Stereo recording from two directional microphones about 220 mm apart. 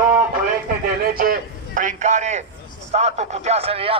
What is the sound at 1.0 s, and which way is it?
A man's voice, 40° right (ahead or behind).